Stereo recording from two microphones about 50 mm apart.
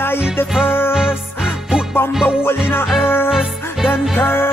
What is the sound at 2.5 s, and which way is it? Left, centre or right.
Music, left.